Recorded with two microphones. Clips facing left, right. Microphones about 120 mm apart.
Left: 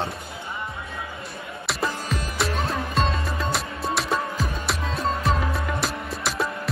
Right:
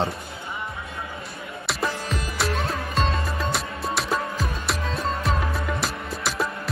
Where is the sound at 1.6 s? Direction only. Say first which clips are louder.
Even; centre (ahead or behind).